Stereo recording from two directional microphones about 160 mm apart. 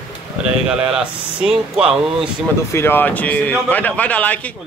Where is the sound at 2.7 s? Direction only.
15° left (ahead or behind).